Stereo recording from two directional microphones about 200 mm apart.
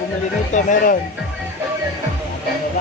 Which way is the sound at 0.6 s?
40° left (ahead or behind).